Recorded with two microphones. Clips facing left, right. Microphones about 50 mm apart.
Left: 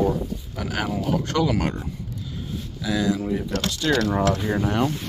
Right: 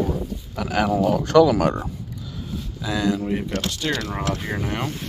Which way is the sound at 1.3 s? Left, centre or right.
Right.